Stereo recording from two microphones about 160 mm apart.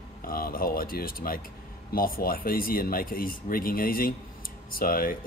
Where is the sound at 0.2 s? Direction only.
65° left (ahead or behind).